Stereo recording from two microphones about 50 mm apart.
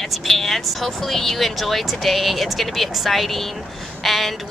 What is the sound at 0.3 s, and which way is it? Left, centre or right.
A woman's voice, centre.